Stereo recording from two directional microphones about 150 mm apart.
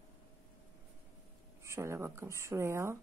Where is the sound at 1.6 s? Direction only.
20° right (ahead or behind).